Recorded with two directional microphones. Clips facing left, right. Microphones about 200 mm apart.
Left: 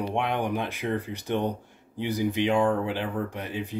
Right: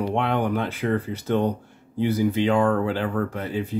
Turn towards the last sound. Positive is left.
turn(degrees=15)  # may be behind; listen again after turning